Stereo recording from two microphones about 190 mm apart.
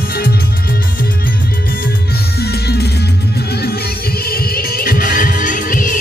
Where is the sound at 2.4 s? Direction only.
60° left (ahead or behind).